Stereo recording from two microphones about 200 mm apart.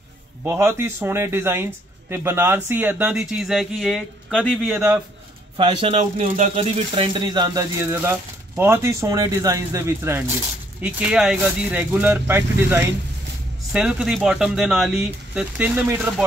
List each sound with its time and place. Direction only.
0.4 s speech: 10° right (ahead or behind); by 4.6 s 5° left (ahead or behind)
4.6 s speech: 10° right (ahead or behind)
5.6 s speech: 25° right (ahead or behind)
7.2 s speech: 20° right (ahead or behind)